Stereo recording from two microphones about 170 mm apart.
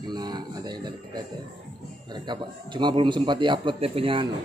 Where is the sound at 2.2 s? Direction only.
25° right (ahead or behind).